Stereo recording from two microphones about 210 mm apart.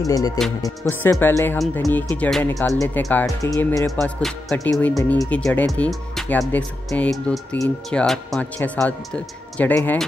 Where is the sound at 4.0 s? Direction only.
Centre (ahead or behind).